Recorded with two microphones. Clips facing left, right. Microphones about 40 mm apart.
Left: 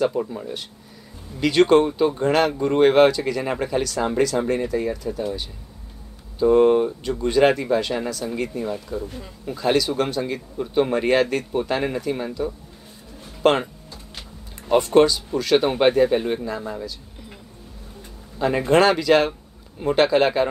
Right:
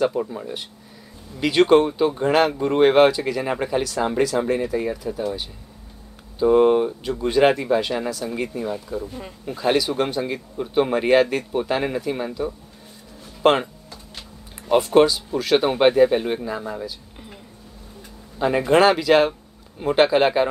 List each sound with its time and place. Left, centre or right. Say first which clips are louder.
0.0 s speech: even; centre
6.4 s speech: even; centre
9.0 s speech: right 1 dB; right
9.5 s speech: even; centre
14.7 s speech: even; centre
18.4 s speech: right 1 dB; centre